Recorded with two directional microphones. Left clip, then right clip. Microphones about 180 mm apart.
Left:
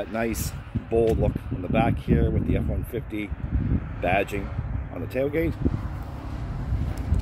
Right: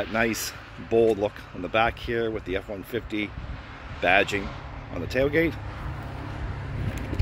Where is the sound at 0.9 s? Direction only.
Centre (ahead or behind).